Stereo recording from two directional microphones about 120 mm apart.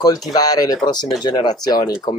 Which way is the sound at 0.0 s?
35° left (ahead or behind).